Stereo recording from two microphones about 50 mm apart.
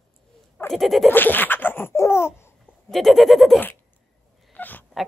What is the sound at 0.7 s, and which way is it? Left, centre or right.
Speech, centre.